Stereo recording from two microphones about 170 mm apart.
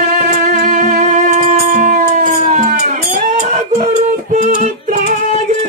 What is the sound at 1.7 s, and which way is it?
Music, 45° right (ahead or behind).